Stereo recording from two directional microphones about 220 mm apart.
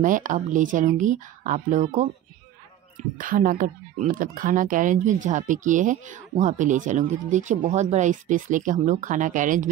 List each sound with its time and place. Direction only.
0.0 s speech: 35° right (ahead or behind)